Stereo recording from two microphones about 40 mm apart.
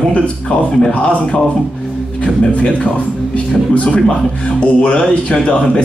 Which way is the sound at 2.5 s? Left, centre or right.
Left.